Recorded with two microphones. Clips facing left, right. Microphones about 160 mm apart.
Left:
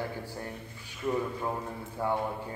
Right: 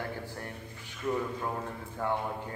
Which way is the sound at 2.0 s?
10° left (ahead or behind).